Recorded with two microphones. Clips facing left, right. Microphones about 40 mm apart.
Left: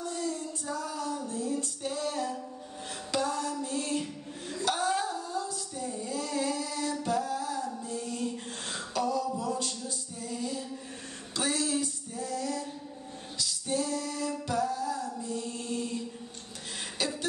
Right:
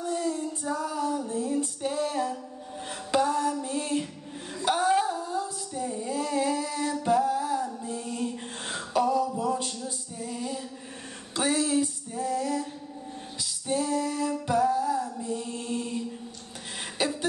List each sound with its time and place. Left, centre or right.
0.0 s female singing: centre
2.9 s music: centre
4.6 s female singing: centre
9.4 s music: right
11.3 s female singing: centre
15.1 s mantra: centre
17.0 s a sound: right